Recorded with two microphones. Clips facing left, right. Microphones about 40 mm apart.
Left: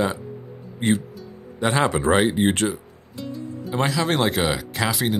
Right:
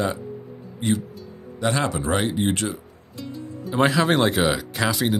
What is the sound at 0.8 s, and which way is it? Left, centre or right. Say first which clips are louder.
Speech: left 2 dB; left.